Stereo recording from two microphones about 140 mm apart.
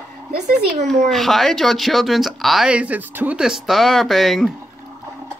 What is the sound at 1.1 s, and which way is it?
Speech, centre (ahead or behind).